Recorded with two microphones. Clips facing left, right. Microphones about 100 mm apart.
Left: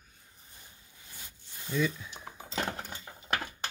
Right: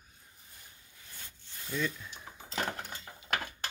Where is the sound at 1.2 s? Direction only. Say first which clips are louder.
Left 2 dB; 15° left (ahead or behind).